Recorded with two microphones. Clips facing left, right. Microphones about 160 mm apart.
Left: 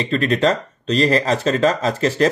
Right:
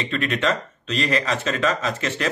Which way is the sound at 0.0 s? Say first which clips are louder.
Left 6 dB; 35° left (ahead or behind).